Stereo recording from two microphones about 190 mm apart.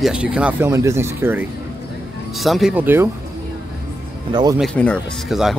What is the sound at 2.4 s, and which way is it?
Speech, centre (ahead or behind).